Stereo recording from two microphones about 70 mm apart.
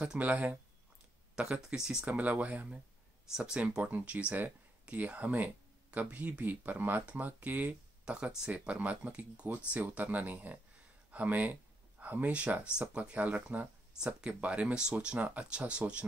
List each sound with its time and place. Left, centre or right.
0.2 s speech: right
2.1 s speech: right